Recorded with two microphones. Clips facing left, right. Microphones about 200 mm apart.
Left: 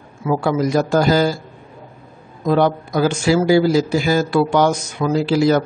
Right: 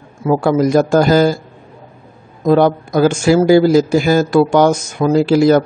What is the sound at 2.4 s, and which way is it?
Speech, 45° right (ahead or behind).